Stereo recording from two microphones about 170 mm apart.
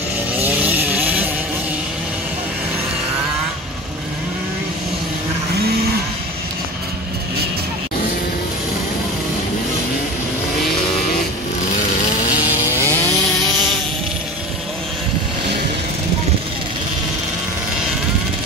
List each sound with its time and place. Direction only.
0.4 s chainsaw: 10° right (ahead or behind)
12.5 s chainsaw: 15° left (ahead or behind)